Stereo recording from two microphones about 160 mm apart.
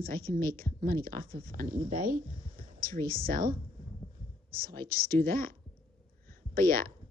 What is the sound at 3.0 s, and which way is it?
Speech, 65° right (ahead or behind).